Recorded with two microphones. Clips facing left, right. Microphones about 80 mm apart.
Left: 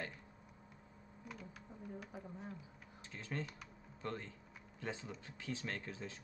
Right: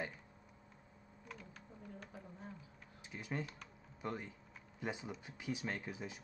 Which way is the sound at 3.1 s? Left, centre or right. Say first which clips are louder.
Right 1 dB; centre.